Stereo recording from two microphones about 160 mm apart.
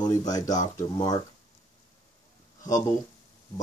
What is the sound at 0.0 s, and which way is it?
Speech, 25° left (ahead or behind).